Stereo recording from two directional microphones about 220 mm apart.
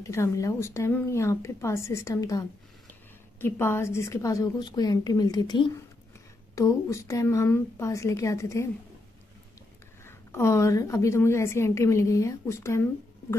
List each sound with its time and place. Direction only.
0.0 s a woman's voice: 15° left (ahead or behind)
10.0 s a woman's voice: 10° left (ahead or behind)